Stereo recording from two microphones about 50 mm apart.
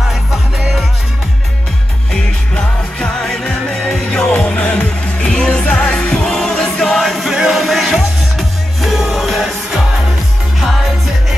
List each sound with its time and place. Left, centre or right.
2.5 s music: centre
10.6 s music: centre